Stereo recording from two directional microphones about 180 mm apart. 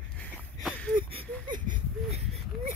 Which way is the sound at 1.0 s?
30° right (ahead or behind).